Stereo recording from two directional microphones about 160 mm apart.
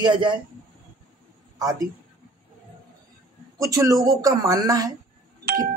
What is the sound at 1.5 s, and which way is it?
Speech, 20° right (ahead or behind).